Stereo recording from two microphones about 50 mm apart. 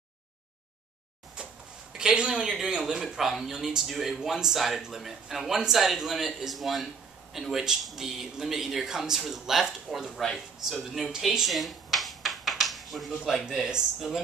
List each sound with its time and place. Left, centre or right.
2.0 s a man's voice: centre
2.8 s a man's voice: centre